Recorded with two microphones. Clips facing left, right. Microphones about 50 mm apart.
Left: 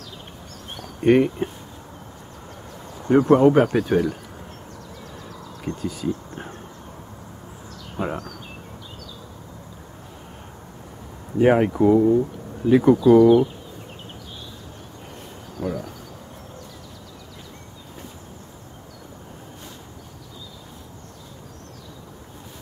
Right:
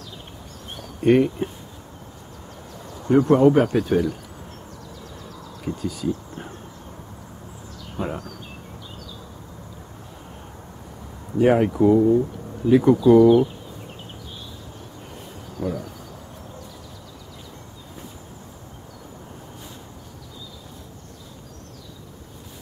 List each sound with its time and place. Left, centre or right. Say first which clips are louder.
1.0 s speech: even; centre
3.3 s speech: even; centre
5.1 s a sound: left 1 dB; centre
8.0 s speech: left 1 dB; centre
11.3 s speech: even; centre
15.6 s a sound: even; centre